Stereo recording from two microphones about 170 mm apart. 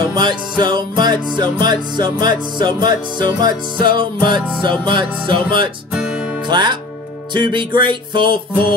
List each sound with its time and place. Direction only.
0.0 s music: 25° right (ahead or behind)
5.9 s music: 5° right (ahead or behind)
6.4 s speech: 25° right (ahead or behind)
7.3 s music: 25° right (ahead or behind)